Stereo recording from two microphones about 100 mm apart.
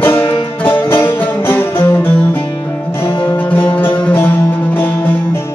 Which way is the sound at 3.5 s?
15° left (ahead or behind).